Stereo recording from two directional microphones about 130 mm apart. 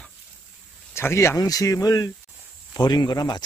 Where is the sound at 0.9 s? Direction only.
20° left (ahead or behind).